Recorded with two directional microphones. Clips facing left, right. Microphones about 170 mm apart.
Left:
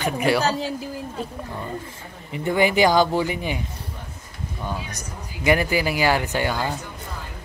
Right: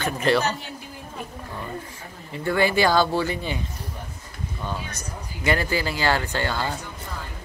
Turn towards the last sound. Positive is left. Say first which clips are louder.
# left 2 dB
turn(degrees=15)  # may be behind; listen again after turning